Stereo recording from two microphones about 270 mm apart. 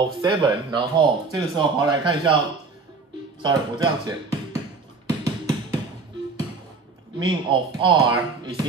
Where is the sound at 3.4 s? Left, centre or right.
Centre.